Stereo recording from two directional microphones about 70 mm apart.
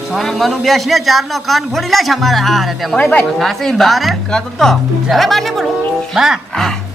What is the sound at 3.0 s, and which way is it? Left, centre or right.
Speech, left.